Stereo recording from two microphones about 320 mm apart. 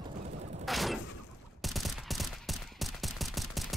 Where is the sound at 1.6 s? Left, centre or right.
Centre.